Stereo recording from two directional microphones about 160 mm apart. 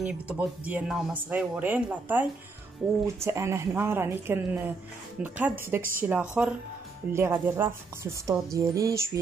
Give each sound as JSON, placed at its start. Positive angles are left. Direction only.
{"t": 0.0, "sound": "speech", "side_deg": -10}
{"t": 8.5, "sound": "music", "side_deg": -20}